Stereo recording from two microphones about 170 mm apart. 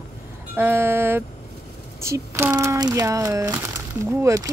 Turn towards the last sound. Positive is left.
turn(degrees=-20)  # may be behind; listen again after turning